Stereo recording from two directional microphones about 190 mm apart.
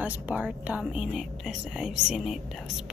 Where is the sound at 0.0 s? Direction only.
5° right (ahead or behind).